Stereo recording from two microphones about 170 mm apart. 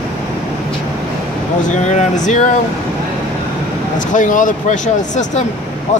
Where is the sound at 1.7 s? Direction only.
45° left (ahead or behind).